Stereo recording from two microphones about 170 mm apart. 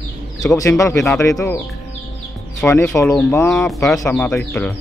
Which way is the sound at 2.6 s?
10° left (ahead or behind).